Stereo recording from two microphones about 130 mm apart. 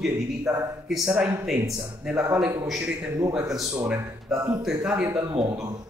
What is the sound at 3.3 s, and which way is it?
A man's voice, 5° right (ahead or behind).